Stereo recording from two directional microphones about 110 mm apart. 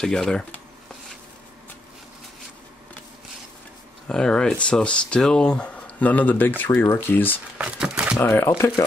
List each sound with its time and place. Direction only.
0.0 s speech: 5° left (ahead or behind)
4.1 s speech: 5° left (ahead or behind)
7.5 s speech: 10° right (ahead or behind)
8.2 s speech: 15° left (ahead or behind)